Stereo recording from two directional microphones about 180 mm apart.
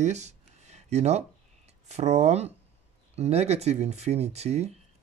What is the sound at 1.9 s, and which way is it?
Speech, 35° right (ahead or behind).